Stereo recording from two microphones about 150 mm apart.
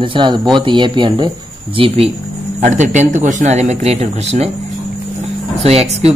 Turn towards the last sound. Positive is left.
turn(degrees=-45)  # may be behind; listen again after turning